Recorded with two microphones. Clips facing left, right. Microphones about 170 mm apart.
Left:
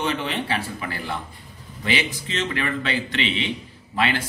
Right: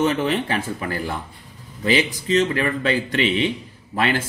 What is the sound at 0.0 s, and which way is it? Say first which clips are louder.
A man's voice: right 6 dB; 45° right (ahead or behind).